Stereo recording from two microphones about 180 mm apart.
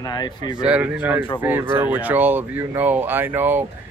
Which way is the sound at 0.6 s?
5° right (ahead or behind).